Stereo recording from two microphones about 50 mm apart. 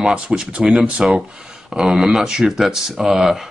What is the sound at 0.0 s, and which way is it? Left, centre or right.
Speech, centre.